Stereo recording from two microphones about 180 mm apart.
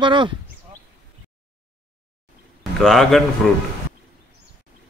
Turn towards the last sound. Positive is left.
turn(degrees=0)  # may be behind; listen again after turning